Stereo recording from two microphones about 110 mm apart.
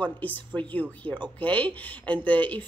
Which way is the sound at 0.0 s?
15° left (ahead or behind).